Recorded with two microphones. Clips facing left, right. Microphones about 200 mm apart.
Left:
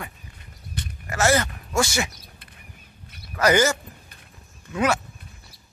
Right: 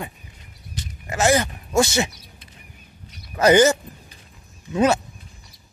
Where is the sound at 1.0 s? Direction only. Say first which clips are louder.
Right 2 dB; 15° right (ahead or behind).